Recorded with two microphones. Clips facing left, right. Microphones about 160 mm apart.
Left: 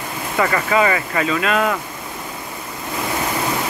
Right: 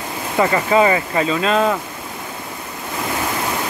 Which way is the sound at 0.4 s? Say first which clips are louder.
Right 3 dB; 20° right (ahead or behind).